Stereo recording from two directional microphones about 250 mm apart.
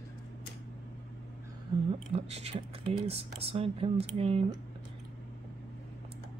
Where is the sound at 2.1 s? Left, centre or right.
Right.